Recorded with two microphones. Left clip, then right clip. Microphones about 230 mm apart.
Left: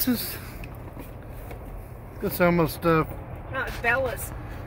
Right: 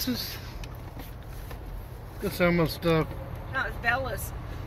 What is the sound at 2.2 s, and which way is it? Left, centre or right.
Speech, centre.